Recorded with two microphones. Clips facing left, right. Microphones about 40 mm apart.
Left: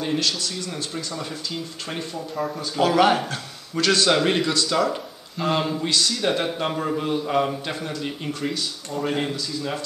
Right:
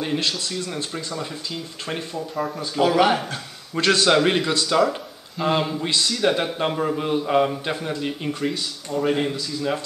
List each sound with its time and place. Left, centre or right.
0.2 s speech: right
2.1 s a man's voice: centre
3.7 s speech: right
4.0 s a man's voice: centre
5.9 s speech: right
6.1 s a man's voice: centre